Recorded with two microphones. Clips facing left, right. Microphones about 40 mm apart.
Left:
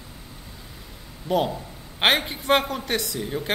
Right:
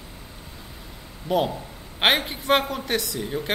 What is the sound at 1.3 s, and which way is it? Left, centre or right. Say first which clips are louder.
A man's voice: even; centre.